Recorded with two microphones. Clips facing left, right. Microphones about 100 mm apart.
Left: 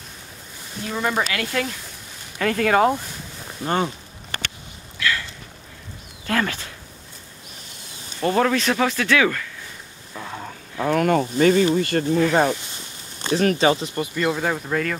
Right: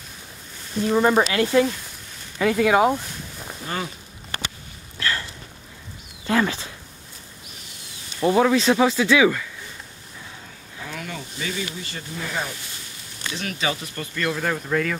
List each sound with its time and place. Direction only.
0.8 s speech: 20° right (ahead or behind)
2.4 s speech: 10° right (ahead or behind)
3.6 s speech: 30° left (ahead or behind)
4.9 s sniff: 35° right (ahead or behind)
6.2 s speech: 15° right (ahead or behind)
8.2 s speech: 10° right (ahead or behind)
10.1 s a sound: 60° left (ahead or behind)
11.7 s speech: 60° left (ahead or behind)
12.3 s speech: 70° left (ahead or behind)
13.2 s speech: 40° left (ahead or behind)
13.7 s speech: 20° left (ahead or behind); by 15.0 s centre (ahead or behind)